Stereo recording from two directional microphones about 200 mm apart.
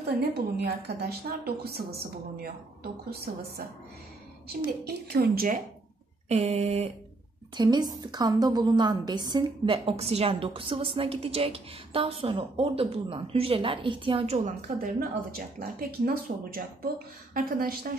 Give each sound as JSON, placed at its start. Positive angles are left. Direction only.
{"t": 0.6, "sound": "a woman's voice", "side_deg": -55}
{"t": 6.2, "sound": "a sound", "side_deg": -30}
{"t": 7.5, "sound": "a woman's voice", "side_deg": -20}